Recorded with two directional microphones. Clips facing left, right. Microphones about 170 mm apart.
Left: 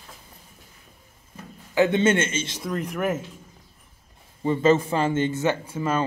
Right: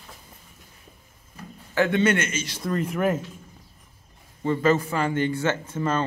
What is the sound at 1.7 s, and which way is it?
Speech, 20° left (ahead or behind).